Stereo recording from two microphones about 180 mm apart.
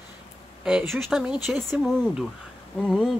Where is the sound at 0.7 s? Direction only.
Centre (ahead or behind).